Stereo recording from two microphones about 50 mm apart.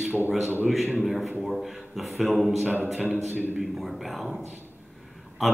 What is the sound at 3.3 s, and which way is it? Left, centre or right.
Speech, right.